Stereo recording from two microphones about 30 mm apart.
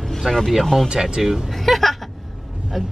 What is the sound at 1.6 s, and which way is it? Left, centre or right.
Speech, centre.